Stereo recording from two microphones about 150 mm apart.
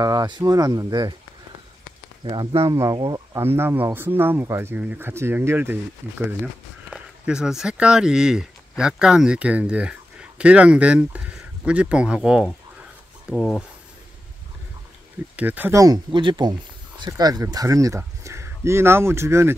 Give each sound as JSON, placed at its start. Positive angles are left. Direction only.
{"t": 0.0, "sound": "speech", "side_deg": -25}
{"t": 2.2, "sound": "speech", "side_deg": -35}
{"t": 2.6, "sound": "speech", "side_deg": -20}
{"t": 3.5, "sound": "speech", "side_deg": -15}
{"t": 13.3, "sound": "speech", "side_deg": 10}
{"t": 15.3, "sound": "speech", "side_deg": -10}